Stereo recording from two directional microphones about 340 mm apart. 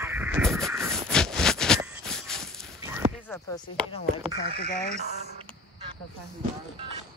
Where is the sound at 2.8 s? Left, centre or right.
Centre.